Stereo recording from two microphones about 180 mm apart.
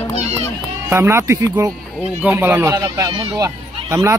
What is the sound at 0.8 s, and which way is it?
Speech, 15° right (ahead or behind).